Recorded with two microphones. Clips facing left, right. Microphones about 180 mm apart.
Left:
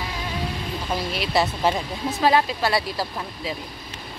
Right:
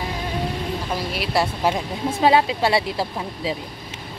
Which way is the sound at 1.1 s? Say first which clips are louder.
Even; 10° right (ahead or behind).